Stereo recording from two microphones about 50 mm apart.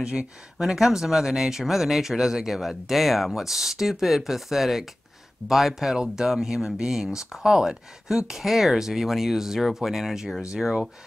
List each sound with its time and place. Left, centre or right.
0.0 s speech: right
0.6 s speech: centre